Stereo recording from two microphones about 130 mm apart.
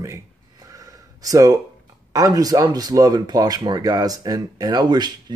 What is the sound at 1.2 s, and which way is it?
Speech, 25° right (ahead or behind).